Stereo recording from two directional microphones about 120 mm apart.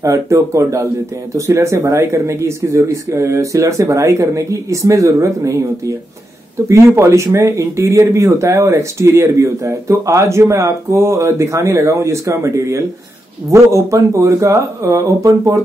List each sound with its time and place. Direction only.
0.0 s speech: 25° right (ahead or behind)